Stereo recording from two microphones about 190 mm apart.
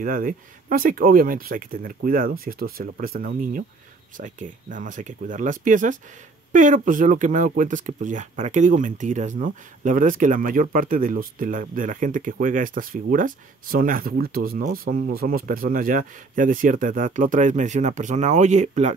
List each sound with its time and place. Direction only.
0.0 s speech: 45° right (ahead or behind)